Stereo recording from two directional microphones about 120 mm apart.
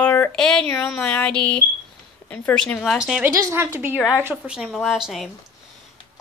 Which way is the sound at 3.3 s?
20° right (ahead or behind).